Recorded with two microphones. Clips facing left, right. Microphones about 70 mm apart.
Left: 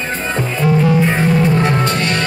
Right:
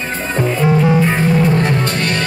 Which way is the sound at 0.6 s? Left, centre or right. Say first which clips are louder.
Left 1 dB; centre.